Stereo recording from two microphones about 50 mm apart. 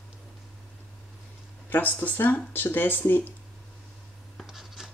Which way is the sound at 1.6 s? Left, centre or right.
Left.